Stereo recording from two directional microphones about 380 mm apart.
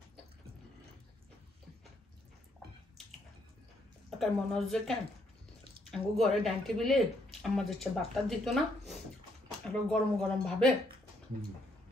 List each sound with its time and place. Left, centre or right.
4.2 s speech: centre